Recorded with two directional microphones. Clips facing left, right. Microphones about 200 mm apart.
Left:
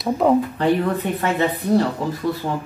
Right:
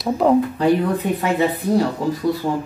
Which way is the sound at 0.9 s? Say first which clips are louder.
Right 2 dB; 10° right (ahead or behind).